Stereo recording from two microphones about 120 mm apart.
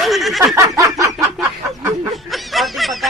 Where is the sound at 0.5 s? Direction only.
30° right (ahead or behind).